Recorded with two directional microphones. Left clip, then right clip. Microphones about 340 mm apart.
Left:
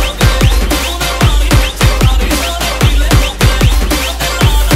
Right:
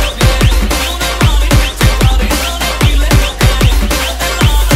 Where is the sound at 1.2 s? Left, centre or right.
Centre.